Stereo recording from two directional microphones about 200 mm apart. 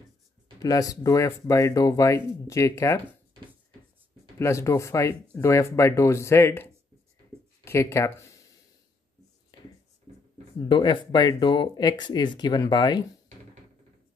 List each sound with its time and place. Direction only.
0.6 s speech: 15° left (ahead or behind)
4.4 s speech: 15° left (ahead or behind)
10.7 s speech: 25° left (ahead or behind)